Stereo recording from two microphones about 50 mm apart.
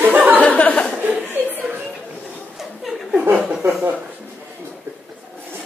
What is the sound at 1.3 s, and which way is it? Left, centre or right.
Speech, right.